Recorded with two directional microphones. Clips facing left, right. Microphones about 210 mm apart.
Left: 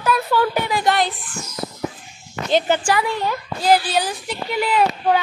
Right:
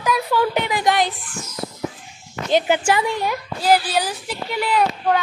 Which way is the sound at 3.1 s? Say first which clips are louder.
Even; 10° right (ahead or behind).